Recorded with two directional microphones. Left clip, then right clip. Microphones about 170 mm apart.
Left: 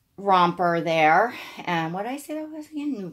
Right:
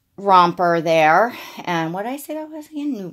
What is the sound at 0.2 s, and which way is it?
Speech, 50° right (ahead or behind).